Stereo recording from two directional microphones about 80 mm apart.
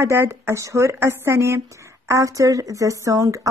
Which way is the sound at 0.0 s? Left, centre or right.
Right.